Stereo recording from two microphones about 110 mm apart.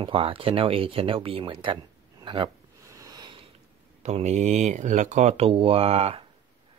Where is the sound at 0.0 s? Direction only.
55° right (ahead or behind).